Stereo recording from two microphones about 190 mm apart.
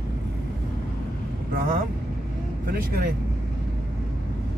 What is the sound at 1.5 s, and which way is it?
Speech, 50° right (ahead or behind).